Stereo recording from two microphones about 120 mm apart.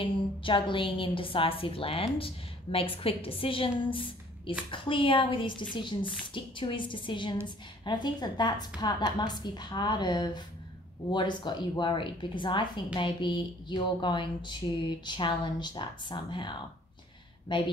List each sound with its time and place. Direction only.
0.0 s a woman's voice: 45° left (ahead or behind)
3.8 s a sound: 45° left (ahead or behind)
4.6 s a woman's voice: 45° left (ahead or behind)